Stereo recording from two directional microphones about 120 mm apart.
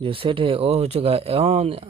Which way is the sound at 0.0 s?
45° right (ahead or behind).